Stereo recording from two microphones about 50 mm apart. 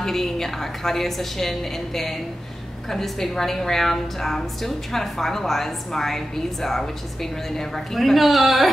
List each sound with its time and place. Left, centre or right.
0.0 s a woman's voice: centre